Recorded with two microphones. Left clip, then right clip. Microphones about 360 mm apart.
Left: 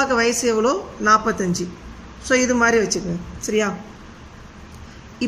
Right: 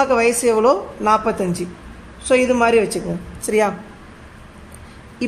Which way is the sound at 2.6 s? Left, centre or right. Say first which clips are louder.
Right 2 dB; centre.